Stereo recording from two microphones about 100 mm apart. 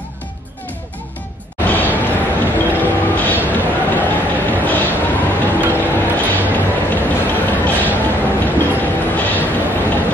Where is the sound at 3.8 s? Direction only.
15° left (ahead or behind).